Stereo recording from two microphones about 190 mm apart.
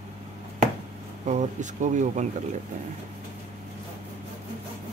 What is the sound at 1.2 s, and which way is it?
Speech, 40° right (ahead or behind).